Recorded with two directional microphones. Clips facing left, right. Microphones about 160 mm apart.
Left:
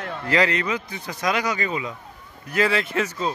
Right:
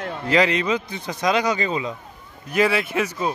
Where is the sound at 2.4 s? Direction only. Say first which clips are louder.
Right 2 dB; 15° right (ahead or behind).